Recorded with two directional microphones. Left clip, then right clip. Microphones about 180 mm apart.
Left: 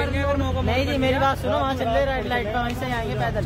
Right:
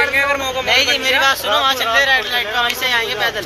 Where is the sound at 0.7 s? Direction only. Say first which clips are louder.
Right 9 dB; 55° left (ahead or behind).